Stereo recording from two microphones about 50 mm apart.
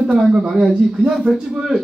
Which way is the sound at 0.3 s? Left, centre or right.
Centre.